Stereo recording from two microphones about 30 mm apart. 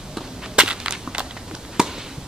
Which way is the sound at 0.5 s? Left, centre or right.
Right.